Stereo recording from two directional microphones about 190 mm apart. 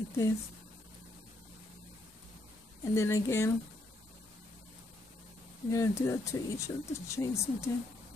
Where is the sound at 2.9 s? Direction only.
15° left (ahead or behind).